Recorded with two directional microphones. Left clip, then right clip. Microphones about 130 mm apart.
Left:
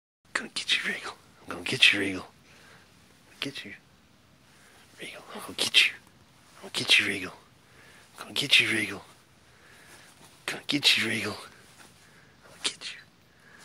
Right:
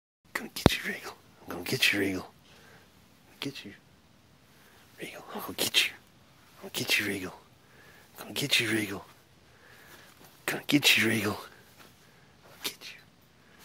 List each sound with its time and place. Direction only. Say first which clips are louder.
0.3 s speech: even; 20° right (ahead or behind)
1.4 s speech: left 6 dB; 30° right (ahead or behind)
3.3 s speech: left 3 dB; 40° right (ahead or behind)
4.9 s speech: right 1 dB; 50° right (ahead or behind)
6.6 s speech: left 6 dB; 30° right (ahead or behind)
8.2 s speech: left 5 dB; 50° right (ahead or behind)
10.4 s speech: even; 80° right
12.6 s sneeze: left 6 dB; 15° right (ahead or behind)